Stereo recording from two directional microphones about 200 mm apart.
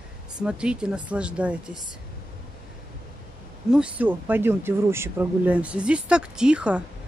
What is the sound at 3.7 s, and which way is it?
Speech, 5° right (ahead or behind).